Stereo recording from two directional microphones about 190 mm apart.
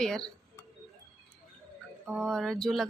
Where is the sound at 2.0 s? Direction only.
5° right (ahead or behind).